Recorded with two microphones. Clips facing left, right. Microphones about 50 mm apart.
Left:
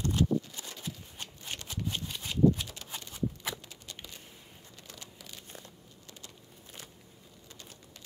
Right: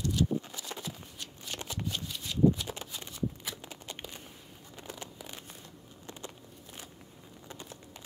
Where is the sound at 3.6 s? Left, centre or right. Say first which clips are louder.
Right 4 dB; right.